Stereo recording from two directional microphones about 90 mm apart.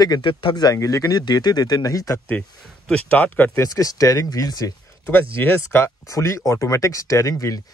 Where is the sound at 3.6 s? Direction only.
40° left (ahead or behind).